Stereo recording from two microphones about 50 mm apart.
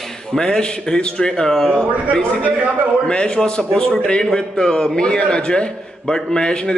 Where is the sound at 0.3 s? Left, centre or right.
Centre.